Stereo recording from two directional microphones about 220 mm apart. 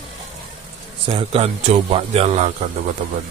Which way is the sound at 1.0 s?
25° right (ahead or behind).